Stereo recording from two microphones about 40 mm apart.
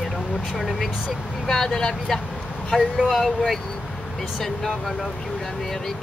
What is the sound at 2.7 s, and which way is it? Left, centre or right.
Speech, centre.